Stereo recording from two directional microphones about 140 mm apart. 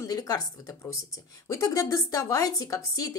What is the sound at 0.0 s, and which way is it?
Speech, 25° left (ahead or behind).